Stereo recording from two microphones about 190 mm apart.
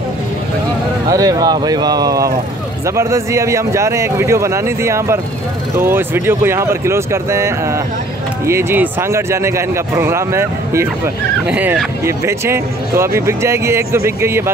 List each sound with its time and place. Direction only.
1.0 s speech: 20° right (ahead or behind)